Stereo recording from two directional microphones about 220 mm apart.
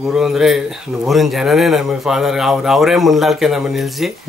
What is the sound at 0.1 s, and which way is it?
Speech, centre (ahead or behind).